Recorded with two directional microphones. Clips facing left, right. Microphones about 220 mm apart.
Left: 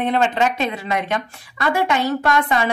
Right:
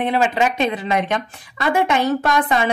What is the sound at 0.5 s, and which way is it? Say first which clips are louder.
Speech: right 3 dB; 20° right (ahead or behind).